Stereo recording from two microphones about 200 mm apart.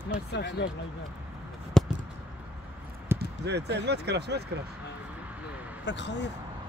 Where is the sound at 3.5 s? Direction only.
55° right (ahead or behind).